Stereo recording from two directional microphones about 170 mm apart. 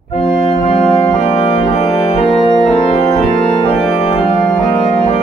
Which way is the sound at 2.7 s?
40° left (ahead or behind).